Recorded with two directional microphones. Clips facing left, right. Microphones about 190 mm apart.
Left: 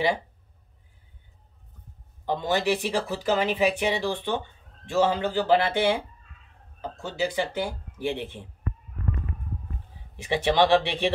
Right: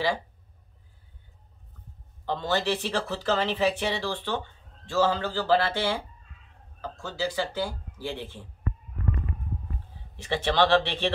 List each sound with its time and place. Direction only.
2.2 s speech: 15° left (ahead or behind)
10.1 s speech: 15° left (ahead or behind)